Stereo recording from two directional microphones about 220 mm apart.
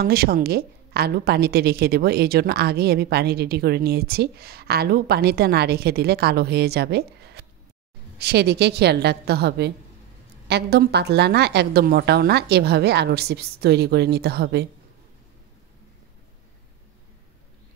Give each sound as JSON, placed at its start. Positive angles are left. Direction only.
{"t": 0.0, "sound": "a woman's voice", "side_deg": -45}